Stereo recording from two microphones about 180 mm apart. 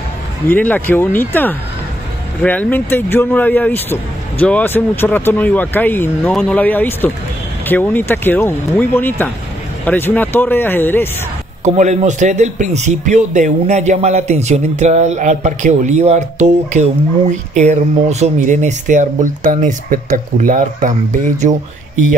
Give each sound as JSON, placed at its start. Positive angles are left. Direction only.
{"t": 0.5, "sound": "speech", "side_deg": 10}
{"t": 11.6, "sound": "a man's voice", "side_deg": -40}
{"t": 18.2, "sound": "a man's voice", "side_deg": -40}